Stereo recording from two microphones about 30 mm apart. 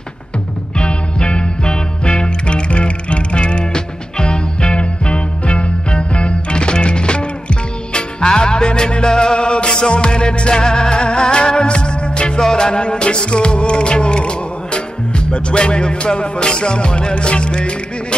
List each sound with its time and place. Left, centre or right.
0.7 s music: left
2.4 s music: left
12.4 s music: left